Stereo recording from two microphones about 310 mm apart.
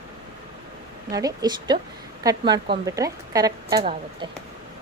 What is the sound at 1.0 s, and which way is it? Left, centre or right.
A woman's voice, centre.